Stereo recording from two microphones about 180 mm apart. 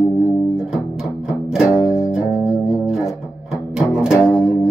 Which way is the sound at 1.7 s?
Centre (ahead or behind).